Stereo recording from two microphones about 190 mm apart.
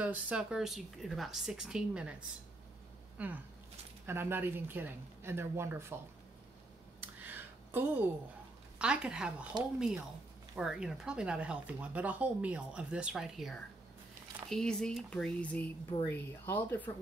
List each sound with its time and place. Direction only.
0.0 s speech: 5° right (ahead or behind)
3.2 s speech: 10° right (ahead or behind)
7.0 s a sound: 10° right (ahead or behind)
8.7 s speech: 5° right (ahead or behind)
10.5 s speech: 5° right (ahead or behind)